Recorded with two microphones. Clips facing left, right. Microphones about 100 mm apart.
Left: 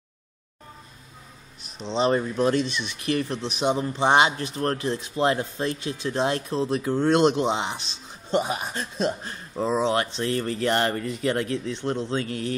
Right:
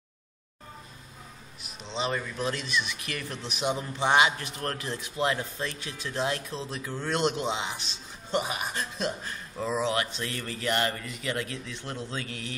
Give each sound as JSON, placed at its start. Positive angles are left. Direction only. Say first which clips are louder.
{"t": 1.9, "sound": "speech", "louder": "left 8 dB", "side_deg": 35}
{"t": 7.2, "sound": "speech", "louder": "left 7 dB", "side_deg": 35}